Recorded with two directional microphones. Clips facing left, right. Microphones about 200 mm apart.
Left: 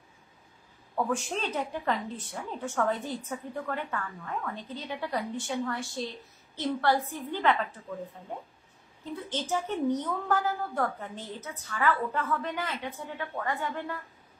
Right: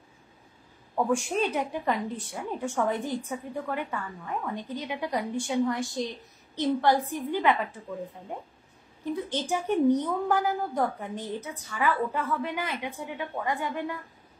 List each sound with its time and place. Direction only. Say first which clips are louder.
0.9 s a woman's voice: right 4 dB; 15° right (ahead or behind)
9.1 s a woman's voice: right 2 dB; 15° right (ahead or behind)